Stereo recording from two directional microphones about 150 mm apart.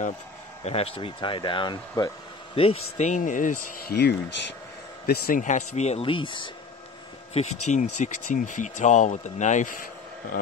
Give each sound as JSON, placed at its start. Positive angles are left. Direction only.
{"t": 0.7, "sound": "speech", "side_deg": 40}
{"t": 2.6, "sound": "speech", "side_deg": 45}
{"t": 7.3, "sound": "speech", "side_deg": 55}
{"t": 10.3, "sound": "speech", "side_deg": 75}